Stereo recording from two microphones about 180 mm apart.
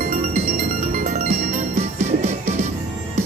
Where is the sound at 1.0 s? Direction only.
40° right (ahead or behind).